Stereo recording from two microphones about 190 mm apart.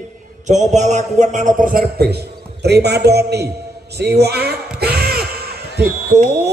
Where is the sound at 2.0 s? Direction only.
60° right (ahead or behind).